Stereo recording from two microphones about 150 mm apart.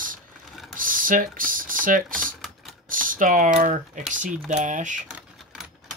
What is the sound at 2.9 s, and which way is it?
Speech, 65° right (ahead or behind).